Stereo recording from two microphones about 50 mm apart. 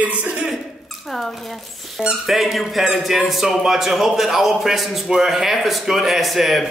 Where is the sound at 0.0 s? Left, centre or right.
Right.